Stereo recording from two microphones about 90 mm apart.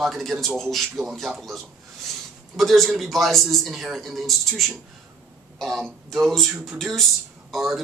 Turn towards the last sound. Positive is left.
turn(degrees=0)  # may be behind; listen again after turning